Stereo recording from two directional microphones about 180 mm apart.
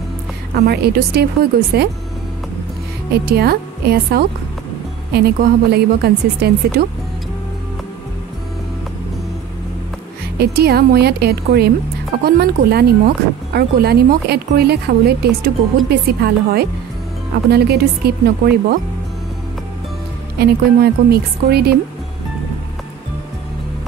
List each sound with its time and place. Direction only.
0.6 s speech: 60° right (ahead or behind)
3.3 s speech: 60° right (ahead or behind)
10.4 s speech: 60° right (ahead or behind)
20.3 s speech: 60° right (ahead or behind)